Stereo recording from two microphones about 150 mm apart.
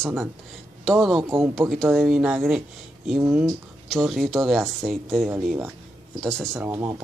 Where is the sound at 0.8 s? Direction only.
Centre (ahead or behind).